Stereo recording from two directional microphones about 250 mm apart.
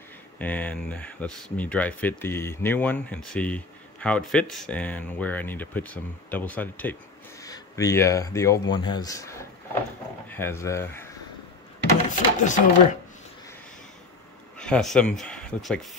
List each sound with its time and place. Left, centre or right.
0.4 s speech: centre
12.0 s a sound: left
14.6 s speech: centre